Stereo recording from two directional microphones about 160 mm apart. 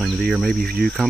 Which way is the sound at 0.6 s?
75° right (ahead or behind).